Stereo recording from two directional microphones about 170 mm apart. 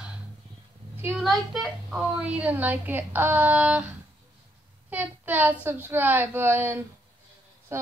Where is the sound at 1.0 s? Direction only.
Centre (ahead or behind).